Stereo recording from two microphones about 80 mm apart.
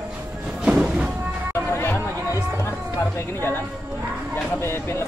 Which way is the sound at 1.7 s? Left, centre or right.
Left.